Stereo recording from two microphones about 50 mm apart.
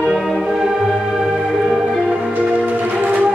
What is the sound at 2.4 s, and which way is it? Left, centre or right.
Music, right.